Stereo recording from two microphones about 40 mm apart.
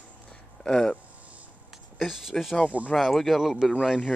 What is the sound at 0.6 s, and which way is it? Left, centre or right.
Speech, centre.